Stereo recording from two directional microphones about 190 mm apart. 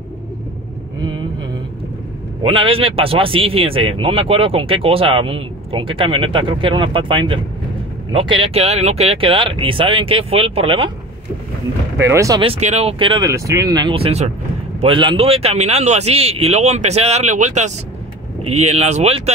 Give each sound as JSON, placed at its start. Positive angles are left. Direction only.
{"t": 2.4, "sound": "a man's voice", "side_deg": -25}
{"t": 12.0, "sound": "speech", "side_deg": -15}
{"t": 12.4, "sound": "a man's voice", "side_deg": -35}